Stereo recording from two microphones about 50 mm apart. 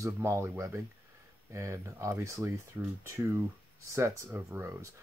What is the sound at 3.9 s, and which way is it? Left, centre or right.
Speech, right.